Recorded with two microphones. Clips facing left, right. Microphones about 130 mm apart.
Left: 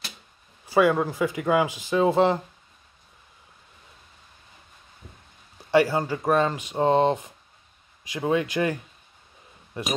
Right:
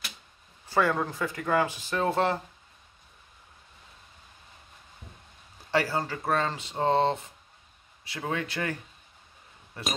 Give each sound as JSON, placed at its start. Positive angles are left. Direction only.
{"t": 0.7, "sound": "speech", "side_deg": 10}
{"t": 5.7, "sound": "speech", "side_deg": 15}
{"t": 9.8, "sound": "speech", "side_deg": 15}